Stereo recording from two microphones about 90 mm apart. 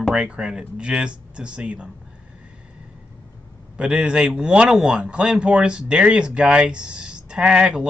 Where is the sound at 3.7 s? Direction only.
10° right (ahead or behind).